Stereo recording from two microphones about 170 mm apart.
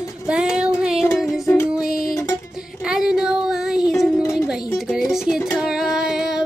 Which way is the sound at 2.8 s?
5° right (ahead or behind).